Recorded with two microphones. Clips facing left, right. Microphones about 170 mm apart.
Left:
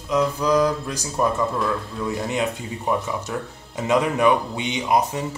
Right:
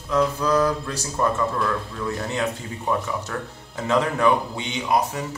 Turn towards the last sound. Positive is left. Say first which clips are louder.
# left 2 dB
turn(degrees=20)  # may be behind; listen again after turning